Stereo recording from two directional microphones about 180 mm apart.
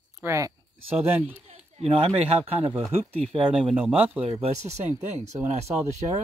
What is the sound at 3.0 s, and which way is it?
Speech, 30° right (ahead or behind).